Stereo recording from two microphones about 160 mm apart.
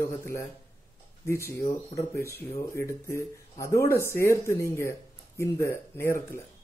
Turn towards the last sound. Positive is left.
turn(degrees=15)  # may be behind; listen again after turning